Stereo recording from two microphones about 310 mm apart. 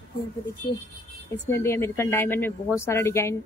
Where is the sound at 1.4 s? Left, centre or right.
Centre.